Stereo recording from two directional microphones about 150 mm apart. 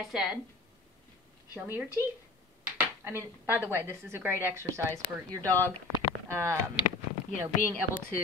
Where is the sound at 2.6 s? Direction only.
15° right (ahead or behind).